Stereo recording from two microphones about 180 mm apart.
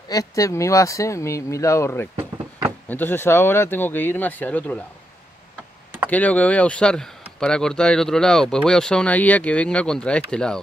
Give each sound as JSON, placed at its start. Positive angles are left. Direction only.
{"t": 0.1, "sound": "speech", "side_deg": 20}
{"t": 6.0, "sound": "speech", "side_deg": 10}